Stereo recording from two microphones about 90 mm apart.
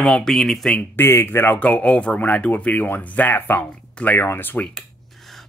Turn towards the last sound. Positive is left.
turn(degrees=20)  # may be behind; listen again after turning